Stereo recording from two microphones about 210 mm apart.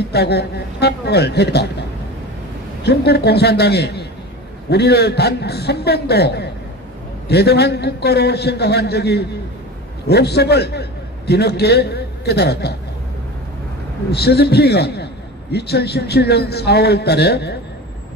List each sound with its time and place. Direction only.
0.1 s a man's voice: 50° left (ahead or behind)
2.8 s a man's voice: 50° left (ahead or behind)
14.1 s a man's voice: 50° left (ahead or behind)